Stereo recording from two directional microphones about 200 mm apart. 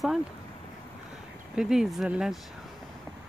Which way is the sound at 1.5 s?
5° right (ahead or behind).